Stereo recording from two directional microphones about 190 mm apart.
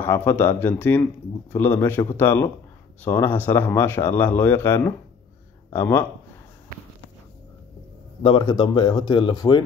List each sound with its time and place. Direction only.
0.0 s speech: 10° left (ahead or behind)
8.2 s speech: 25° left (ahead or behind)